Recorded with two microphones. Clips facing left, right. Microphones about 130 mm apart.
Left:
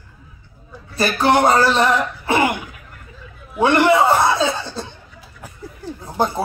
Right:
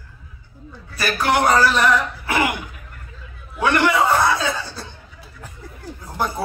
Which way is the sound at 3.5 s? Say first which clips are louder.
Left 4 dB; 25° left (ahead or behind).